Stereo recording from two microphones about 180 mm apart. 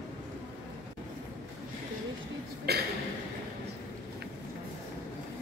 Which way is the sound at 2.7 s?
60° right (ahead or behind).